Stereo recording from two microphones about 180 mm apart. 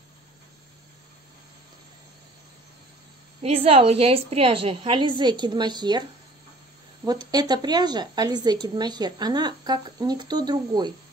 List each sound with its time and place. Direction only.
3.4 s a woman's voice: 35° right (ahead or behind)
7.1 s a woman's voice: 20° right (ahead or behind)